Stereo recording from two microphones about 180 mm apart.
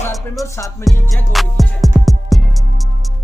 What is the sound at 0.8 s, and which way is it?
Music, centre (ahead or behind).